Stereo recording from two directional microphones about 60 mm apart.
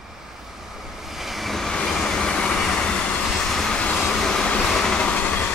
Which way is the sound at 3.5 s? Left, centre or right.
Centre.